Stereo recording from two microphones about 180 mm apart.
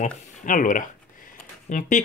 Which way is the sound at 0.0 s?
50° left (ahead or behind).